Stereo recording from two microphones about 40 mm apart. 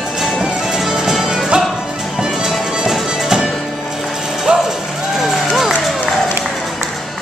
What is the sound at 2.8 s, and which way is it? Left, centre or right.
Music, centre.